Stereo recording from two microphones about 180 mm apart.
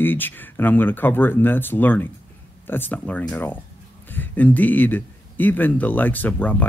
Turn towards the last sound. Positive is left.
turn(degrees=10)  # may be behind; listen again after turning